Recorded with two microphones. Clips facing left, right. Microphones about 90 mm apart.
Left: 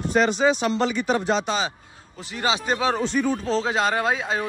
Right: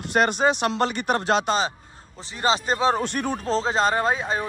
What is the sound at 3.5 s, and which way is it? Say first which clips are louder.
Speech: right 5 dB; 30° right (ahead or behind).